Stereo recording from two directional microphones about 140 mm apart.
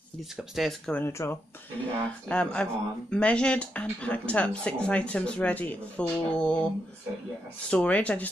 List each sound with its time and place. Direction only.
0.6 s speech: centre (ahead or behind)
0.9 s speech: 15° left (ahead or behind)
7.7 s speech: 10° left (ahead or behind)